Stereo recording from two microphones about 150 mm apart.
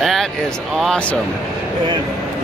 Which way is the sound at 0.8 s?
5° left (ahead or behind).